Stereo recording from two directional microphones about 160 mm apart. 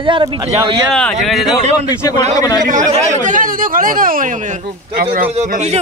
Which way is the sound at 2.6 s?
55° right (ahead or behind).